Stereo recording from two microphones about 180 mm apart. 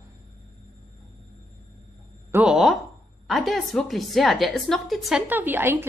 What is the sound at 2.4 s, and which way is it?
A woman's voice, centre (ahead or behind).